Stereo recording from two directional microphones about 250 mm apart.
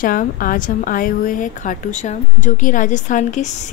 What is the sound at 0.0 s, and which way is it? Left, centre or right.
A woman's voice, left.